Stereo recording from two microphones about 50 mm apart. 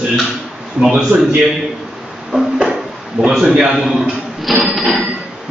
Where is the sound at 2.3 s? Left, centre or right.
Centre.